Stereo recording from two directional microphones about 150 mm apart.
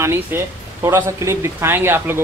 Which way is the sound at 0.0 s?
15° right (ahead or behind).